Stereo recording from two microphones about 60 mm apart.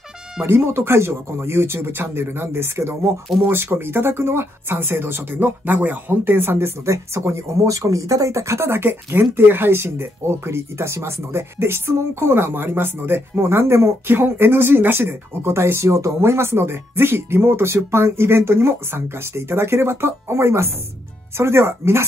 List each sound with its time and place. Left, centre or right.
0.4 s speech: right
6.9 s speech: right